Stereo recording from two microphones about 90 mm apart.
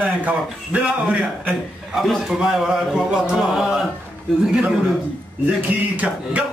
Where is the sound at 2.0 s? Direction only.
Centre (ahead or behind); by 5.8 s 15° right (ahead or behind).